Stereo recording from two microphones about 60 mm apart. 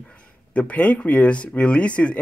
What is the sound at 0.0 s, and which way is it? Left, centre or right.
Speech, centre.